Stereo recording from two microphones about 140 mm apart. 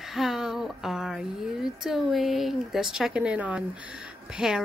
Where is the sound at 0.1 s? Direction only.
Centre (ahead or behind).